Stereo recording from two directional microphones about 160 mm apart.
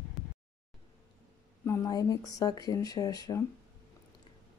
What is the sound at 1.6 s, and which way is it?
Speech, 20° left (ahead or behind).